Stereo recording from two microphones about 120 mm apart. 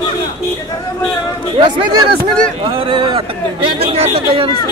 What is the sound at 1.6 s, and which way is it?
Speech, 45° right (ahead or behind).